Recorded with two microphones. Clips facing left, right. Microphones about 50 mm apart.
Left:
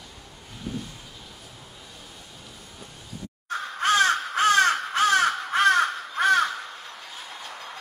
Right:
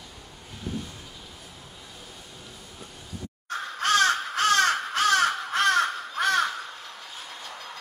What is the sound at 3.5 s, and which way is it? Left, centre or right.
Crow, centre.